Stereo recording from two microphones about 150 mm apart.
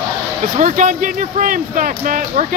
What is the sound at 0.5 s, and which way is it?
Speech, 55° right (ahead or behind).